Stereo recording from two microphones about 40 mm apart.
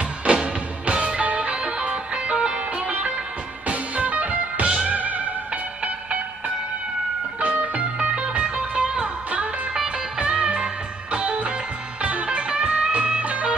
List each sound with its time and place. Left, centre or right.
0.2 s music: right
3.6 s music: right
7.3 s music: right
8.0 s music: right